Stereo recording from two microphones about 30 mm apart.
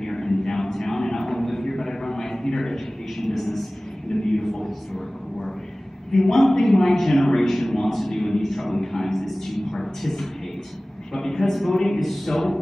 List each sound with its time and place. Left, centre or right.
0.0 s a sound: centre
2.7 s a woman's voice: centre
4.1 s a man's voice: left
4.5 s a man's voice: centre
6.1 s a man's voice: centre
9.2 s a woman's voice: centre
9.8 s a man's voice: centre